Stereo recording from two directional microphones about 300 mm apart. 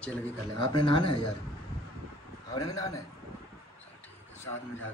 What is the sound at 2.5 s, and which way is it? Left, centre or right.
Speech, centre.